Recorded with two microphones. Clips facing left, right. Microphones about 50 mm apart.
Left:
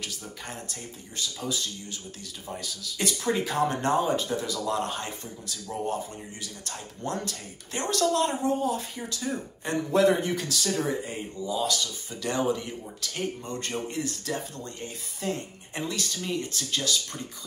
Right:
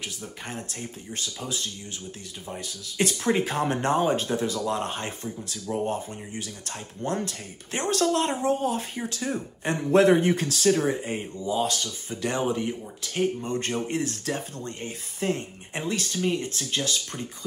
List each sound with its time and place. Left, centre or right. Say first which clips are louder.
0.0 s speech: right 2 dB; right